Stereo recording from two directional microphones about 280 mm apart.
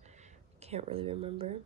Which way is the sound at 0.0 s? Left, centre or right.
Right.